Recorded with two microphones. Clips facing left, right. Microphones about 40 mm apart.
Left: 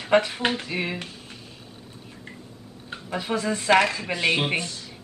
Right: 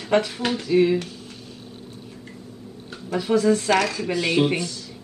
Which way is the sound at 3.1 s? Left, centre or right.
Left.